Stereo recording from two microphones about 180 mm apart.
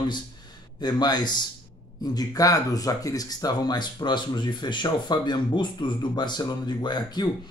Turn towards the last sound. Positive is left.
turn(degrees=25)  # may be behind; listen again after turning